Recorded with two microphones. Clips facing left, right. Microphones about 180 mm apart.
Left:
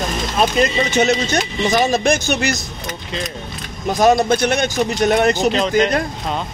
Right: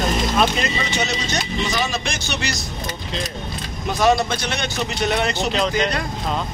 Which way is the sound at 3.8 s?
45° left (ahead or behind).